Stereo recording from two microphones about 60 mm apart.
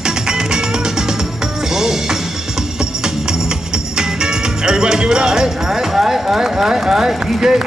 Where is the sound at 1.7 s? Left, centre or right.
Centre.